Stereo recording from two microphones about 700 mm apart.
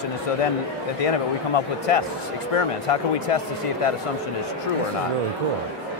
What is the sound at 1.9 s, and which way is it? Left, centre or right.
Speech, left.